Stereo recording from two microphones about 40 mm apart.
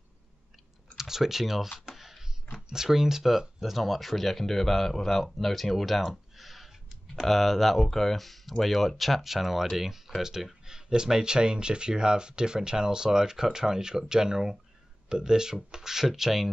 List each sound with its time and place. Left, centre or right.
0.9 s speech: centre
1.9 s a sound: centre
2.5 s speech: centre